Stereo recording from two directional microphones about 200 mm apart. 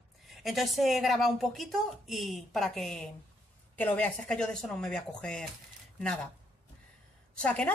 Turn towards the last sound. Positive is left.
turn(degrees=5)  # may be behind; listen again after turning